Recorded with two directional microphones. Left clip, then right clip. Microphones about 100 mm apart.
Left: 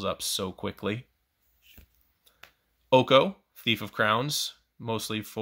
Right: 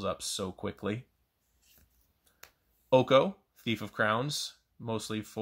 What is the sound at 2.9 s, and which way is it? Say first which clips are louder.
Speech: left 3 dB; 20° left (ahead or behind).